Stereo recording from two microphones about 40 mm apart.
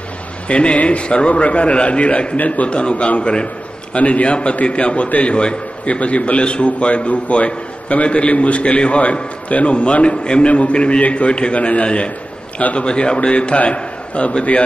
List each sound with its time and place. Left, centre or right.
0.5 s a man's voice: left
2.3 s a man's voice: left
2.7 s a man's voice: left